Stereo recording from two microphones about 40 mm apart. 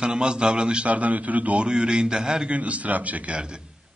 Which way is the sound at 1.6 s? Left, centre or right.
Right.